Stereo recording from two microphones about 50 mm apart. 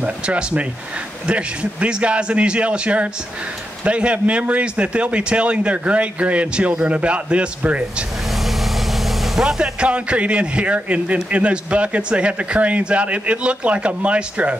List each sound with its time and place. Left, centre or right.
0.0 s a man's voice: right
9.2 s vehicle: centre
9.6 s a man's voice: right